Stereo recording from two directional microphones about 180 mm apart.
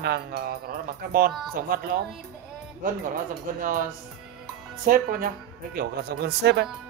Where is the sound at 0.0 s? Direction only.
60° right (ahead or behind).